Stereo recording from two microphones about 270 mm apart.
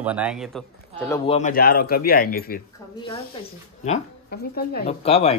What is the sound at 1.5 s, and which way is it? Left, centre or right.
Speech, left.